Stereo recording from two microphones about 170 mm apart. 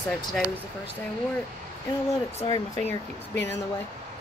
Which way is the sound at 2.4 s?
20° left (ahead or behind).